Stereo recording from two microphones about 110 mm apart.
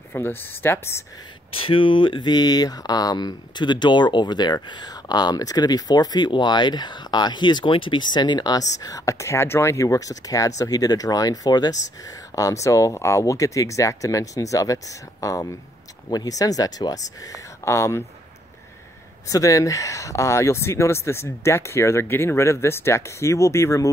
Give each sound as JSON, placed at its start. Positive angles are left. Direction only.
{"t": 0.1, "sound": "speech", "side_deg": 20}
{"t": 1.6, "sound": "speech", "side_deg": 55}
{"t": 19.2, "sound": "speech", "side_deg": 30}